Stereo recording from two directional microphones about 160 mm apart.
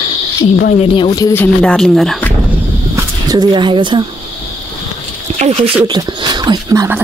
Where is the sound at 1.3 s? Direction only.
10° left (ahead or behind).